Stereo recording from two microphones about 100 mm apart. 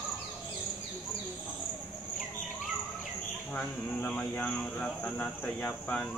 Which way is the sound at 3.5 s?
10° left (ahead or behind).